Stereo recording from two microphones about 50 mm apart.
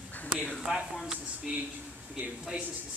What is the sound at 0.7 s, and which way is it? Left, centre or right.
Speech, centre.